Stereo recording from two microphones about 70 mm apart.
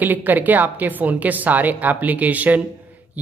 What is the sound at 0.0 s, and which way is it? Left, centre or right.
Speech, right.